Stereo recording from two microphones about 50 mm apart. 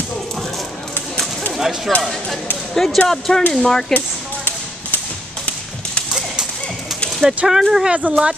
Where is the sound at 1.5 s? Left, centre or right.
Centre.